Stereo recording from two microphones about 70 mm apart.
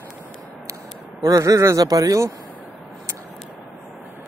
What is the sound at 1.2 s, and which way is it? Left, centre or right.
Speech, right.